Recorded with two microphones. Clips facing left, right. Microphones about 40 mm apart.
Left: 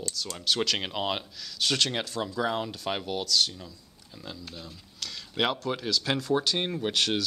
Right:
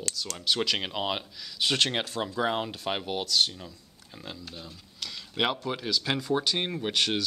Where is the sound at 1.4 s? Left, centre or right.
Centre.